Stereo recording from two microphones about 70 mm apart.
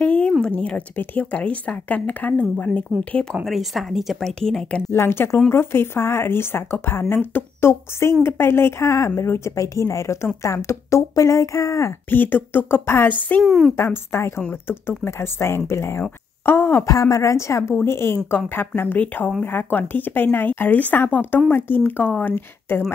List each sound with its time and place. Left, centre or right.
0.0 s a sound: left
0.4 s speech: centre
3.4 s a woman's voice: centre
4.4 s speech: centre
4.9 s speech: left
12.1 s speech: left
13.4 s a woman's voice: centre
13.7 s speech: left
16.8 s speech: left